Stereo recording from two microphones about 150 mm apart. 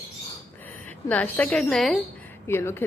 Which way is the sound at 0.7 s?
10° left (ahead or behind).